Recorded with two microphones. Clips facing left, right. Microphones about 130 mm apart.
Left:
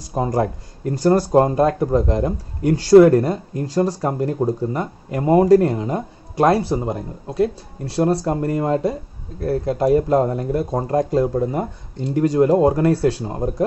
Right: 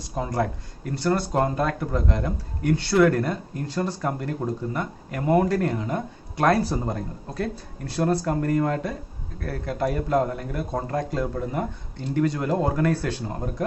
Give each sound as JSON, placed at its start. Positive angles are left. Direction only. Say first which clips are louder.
{"t": 0.1, "sound": "speech", "louder": "left 6 dB", "side_deg": 35}